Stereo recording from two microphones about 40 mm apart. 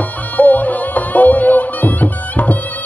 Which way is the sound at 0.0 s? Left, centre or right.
Left.